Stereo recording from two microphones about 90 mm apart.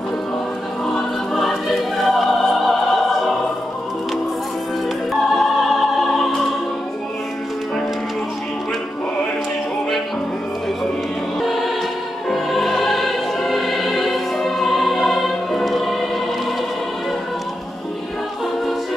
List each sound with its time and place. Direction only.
0.9 s music: centre (ahead or behind)
5.1 s music: centre (ahead or behind)
11.4 s music: centre (ahead or behind)